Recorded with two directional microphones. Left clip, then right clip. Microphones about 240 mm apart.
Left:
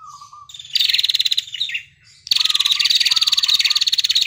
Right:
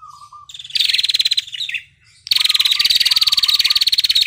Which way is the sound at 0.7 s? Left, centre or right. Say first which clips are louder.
Right 1 dB; centre.